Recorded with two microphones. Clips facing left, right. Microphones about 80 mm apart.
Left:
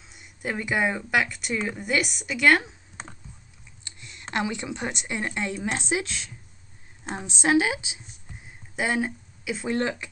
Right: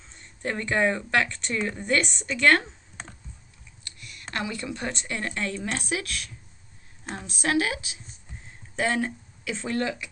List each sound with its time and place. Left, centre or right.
0.0 s speech: centre
3.8 s a woman's voice: left; by 9.7 s centre
9.7 s speech: left